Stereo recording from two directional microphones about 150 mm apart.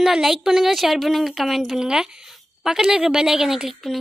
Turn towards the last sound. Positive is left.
turn(degrees=0)  # may be behind; listen again after turning